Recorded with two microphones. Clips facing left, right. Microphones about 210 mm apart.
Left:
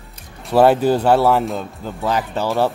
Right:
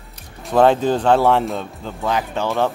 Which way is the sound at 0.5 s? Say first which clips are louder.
Left 1 dB; 5° left (ahead or behind).